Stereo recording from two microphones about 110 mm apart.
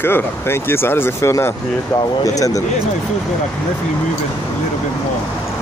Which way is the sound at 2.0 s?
35° left (ahead or behind).